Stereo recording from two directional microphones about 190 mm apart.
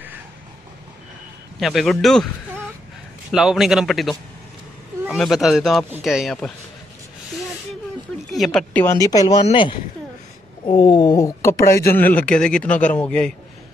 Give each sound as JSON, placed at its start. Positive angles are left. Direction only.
{"t": 1.6, "sound": "a man's voice", "side_deg": 0}
{"t": 3.3, "sound": "a man's voice", "side_deg": 0}
{"t": 8.3, "sound": "a woman's voice", "side_deg": 0}